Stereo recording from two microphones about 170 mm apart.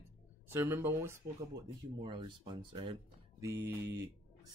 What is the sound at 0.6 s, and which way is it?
Speech, 15° right (ahead or behind).